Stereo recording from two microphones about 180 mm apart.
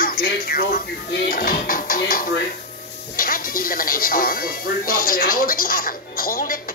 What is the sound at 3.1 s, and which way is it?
Speech, 50° left (ahead or behind).